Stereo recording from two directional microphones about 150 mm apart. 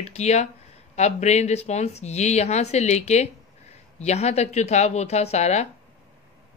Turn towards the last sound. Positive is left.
turn(degrees=50)  # may be behind; listen again after turning